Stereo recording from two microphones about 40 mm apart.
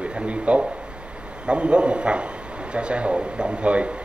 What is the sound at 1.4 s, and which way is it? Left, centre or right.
A man's voice, right.